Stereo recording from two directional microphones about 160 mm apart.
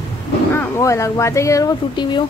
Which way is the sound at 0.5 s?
15° left (ahead or behind).